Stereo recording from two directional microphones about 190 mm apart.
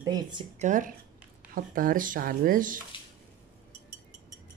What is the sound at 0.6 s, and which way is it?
Speech, 40° right (ahead or behind).